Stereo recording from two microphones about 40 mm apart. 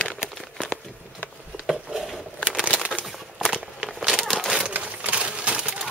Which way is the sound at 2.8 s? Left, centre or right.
Right.